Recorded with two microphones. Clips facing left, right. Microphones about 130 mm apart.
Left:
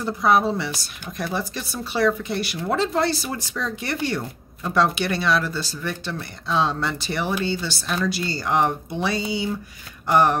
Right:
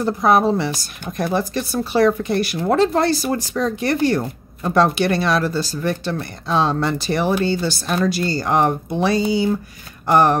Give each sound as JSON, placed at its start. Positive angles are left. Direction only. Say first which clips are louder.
{"t": 0.0, "sound": "speech", "louder": "right 4 dB", "side_deg": -45}